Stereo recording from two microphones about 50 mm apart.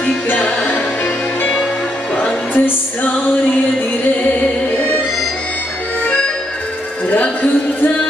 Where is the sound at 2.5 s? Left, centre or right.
Left.